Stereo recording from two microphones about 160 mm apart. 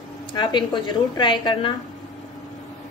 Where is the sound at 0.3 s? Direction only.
30° left (ahead or behind).